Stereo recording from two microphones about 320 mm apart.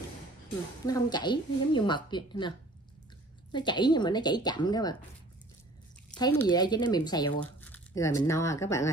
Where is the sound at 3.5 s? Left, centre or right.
Centre.